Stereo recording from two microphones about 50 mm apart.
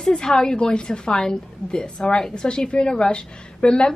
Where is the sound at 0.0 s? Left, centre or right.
Centre.